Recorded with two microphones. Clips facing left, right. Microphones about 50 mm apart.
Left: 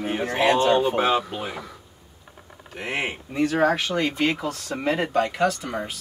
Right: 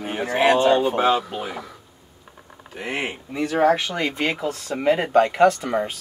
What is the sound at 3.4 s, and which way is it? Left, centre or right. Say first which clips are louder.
Speech: right 2 dB; centre.